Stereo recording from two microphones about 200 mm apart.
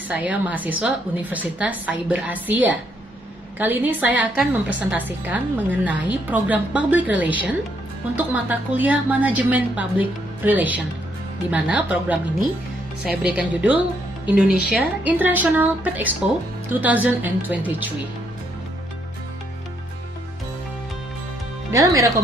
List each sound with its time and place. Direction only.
0.1 s a woman's voice: 5° right (ahead or behind)
21.7 s a woman's voice: 15° right (ahead or behind)